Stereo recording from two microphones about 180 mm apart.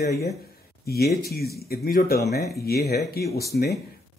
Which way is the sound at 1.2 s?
60° left (ahead or behind).